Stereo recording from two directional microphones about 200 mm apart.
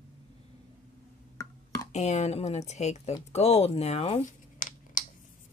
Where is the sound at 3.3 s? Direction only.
30° left (ahead or behind).